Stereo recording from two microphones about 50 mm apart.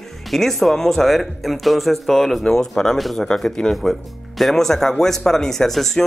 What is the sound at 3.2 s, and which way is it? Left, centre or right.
Speech, centre.